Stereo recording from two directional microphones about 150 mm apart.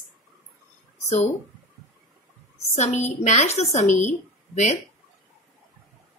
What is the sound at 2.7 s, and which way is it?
A woman's voice, 50° left (ahead or behind).